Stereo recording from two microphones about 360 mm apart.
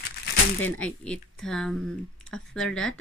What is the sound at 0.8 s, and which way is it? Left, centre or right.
Speech, centre.